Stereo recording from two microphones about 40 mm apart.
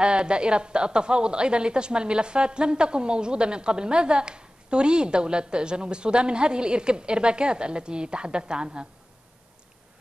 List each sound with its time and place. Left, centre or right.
0.0 s a woman's voice: right